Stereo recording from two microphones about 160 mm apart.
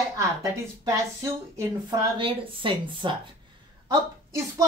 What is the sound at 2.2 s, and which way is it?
Speech, 35° right (ahead or behind).